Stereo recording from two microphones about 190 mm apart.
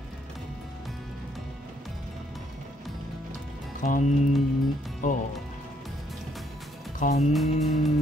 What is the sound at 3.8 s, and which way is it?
Speech, 45° left (ahead or behind).